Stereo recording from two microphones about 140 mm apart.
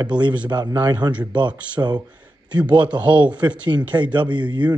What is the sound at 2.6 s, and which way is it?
Speech, 10° right (ahead or behind).